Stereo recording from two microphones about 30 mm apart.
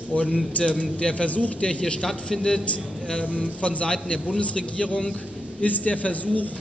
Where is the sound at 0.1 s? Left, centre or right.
Left.